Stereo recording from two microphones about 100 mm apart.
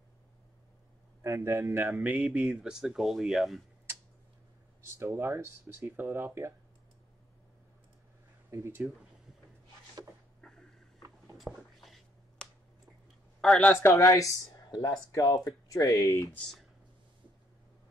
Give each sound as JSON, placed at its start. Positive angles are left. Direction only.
{"t": 1.2, "sound": "speech", "side_deg": -30}
{"t": 2.2, "sound": "speech", "side_deg": -5}
{"t": 4.9, "sound": "speech", "side_deg": -30}
{"t": 8.5, "sound": "speech", "side_deg": -25}
{"t": 10.4, "sound": "a sound", "side_deg": 5}
{"t": 13.4, "sound": "speech", "side_deg": 10}
{"t": 13.8, "sound": "speech", "side_deg": 30}